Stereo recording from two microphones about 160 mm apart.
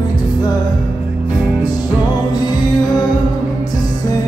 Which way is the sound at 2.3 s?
25° left (ahead or behind).